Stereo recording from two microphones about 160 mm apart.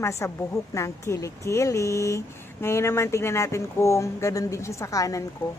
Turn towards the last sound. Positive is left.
turn(degrees=20)  # may be behind; listen again after turning